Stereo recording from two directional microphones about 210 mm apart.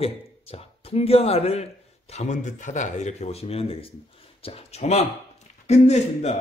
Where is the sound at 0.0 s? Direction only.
30° left (ahead or behind).